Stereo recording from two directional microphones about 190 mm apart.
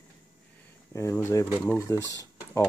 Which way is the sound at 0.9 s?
15° left (ahead or behind).